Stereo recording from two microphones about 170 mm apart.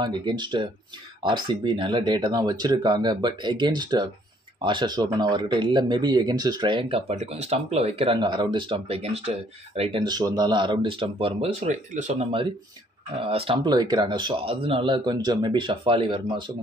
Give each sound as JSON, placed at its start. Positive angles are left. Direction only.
{"t": 0.0, "sound": "speech", "side_deg": -25}
{"t": 11.6, "sound": "speech", "side_deg": -45}
{"t": 13.2, "sound": "speech", "side_deg": -35}